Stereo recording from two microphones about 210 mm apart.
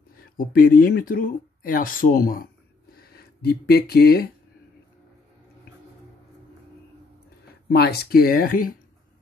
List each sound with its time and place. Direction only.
0.2 s speech: 45° left (ahead or behind)
2.9 s a sound: 45° left (ahead or behind)
7.7 s speech: 50° left (ahead or behind)